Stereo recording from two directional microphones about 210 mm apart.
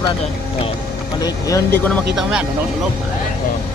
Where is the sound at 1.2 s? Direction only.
15° left (ahead or behind).